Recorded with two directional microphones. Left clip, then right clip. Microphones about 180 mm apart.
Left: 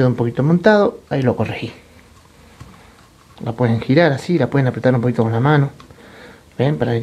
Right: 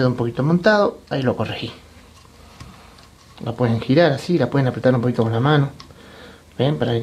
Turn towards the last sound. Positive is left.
turn(degrees=10)  # may be behind; listen again after turning